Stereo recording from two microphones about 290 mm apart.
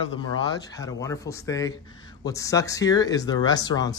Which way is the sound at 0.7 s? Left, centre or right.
Centre.